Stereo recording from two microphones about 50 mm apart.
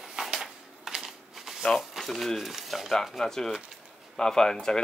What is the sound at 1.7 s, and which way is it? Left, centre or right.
Speech, centre.